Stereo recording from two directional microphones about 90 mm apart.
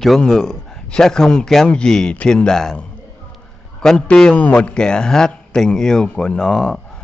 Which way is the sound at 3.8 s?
10° left (ahead or behind).